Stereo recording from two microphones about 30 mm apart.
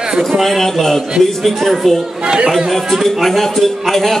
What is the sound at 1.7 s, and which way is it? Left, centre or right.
Speech, centre.